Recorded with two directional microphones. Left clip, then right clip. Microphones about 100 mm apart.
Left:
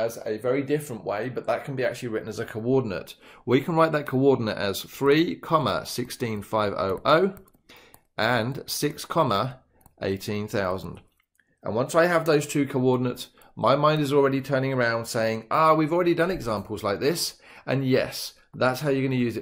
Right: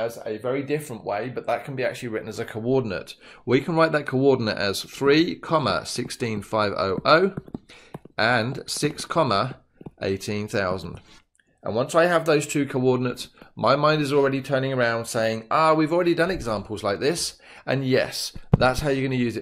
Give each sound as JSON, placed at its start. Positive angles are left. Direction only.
{"t": 0.0, "sound": "speech", "side_deg": -5}
{"t": 17.7, "sound": "speech", "side_deg": -30}